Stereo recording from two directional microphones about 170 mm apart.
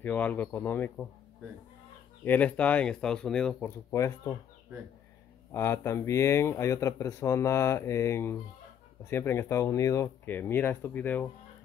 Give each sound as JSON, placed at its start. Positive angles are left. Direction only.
{"t": 0.0, "sound": "speech", "side_deg": 10}
{"t": 2.2, "sound": "speech", "side_deg": 10}
{"t": 3.9, "sound": "speech", "side_deg": 15}
{"t": 5.5, "sound": "speech", "side_deg": 15}